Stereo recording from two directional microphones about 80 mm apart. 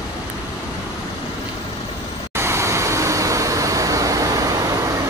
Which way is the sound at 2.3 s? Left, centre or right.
Right.